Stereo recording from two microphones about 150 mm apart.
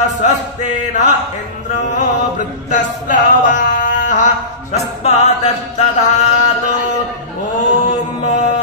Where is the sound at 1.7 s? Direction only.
55° left (ahead or behind).